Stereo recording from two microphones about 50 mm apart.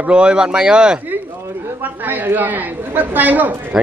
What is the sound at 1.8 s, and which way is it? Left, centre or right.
Speech, right.